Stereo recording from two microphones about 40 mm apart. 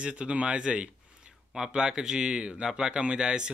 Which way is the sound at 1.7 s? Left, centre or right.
Centre.